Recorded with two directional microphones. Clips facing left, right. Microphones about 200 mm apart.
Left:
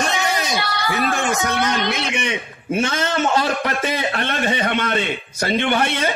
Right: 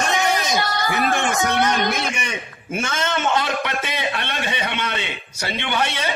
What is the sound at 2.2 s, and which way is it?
A man's voice, 30° left (ahead or behind).